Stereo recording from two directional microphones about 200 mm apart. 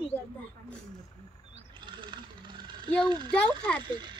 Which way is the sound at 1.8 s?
25° right (ahead or behind).